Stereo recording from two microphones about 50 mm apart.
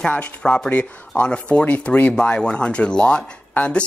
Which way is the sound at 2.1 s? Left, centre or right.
Centre.